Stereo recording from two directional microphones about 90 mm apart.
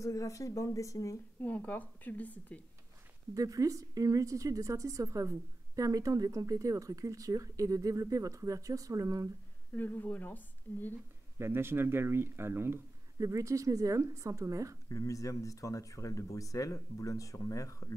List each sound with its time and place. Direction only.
0.0 s speech: 35° left (ahead or behind)
1.4 s a woman's voice: 15° left (ahead or behind)
3.3 s a woman's voice: 40° right (ahead or behind)
9.8 s speech: 20° left (ahead or behind)
11.3 s a woman's voice: 25° right (ahead or behind)
14.9 s speech: 35° left (ahead or behind)